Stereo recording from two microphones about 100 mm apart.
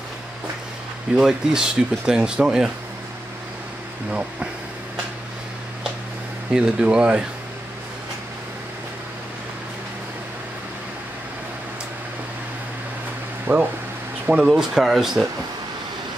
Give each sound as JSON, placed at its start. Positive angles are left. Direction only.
{"t": 1.1, "sound": "speech", "side_deg": -5}
{"t": 4.1, "sound": "speech", "side_deg": -10}
{"t": 6.5, "sound": "speech", "side_deg": -10}
{"t": 13.5, "sound": "speech", "side_deg": -20}
{"t": 14.2, "sound": "speech", "side_deg": -5}